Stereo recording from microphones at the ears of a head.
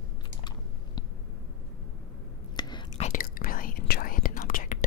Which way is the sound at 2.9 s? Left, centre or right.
Left.